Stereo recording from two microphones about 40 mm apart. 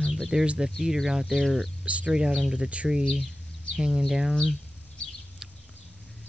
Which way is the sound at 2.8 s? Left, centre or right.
Centre.